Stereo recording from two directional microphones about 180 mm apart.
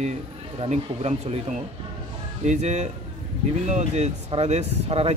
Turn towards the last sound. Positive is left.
turn(degrees=-35)  # may be behind; listen again after turning